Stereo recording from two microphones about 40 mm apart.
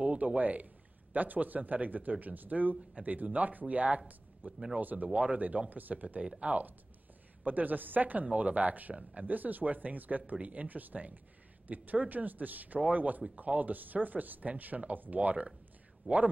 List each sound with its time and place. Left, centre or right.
0.0 s a sound: right
0.4 s speech: right
4.5 s speech: centre
4.7 s speech: right
6.5 s speech: right
7.4 s speech: right
8.3 s speech: right
14.7 s speech: centre
15.1 s speech: right